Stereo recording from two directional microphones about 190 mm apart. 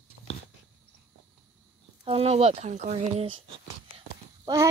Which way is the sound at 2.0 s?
30° right (ahead or behind).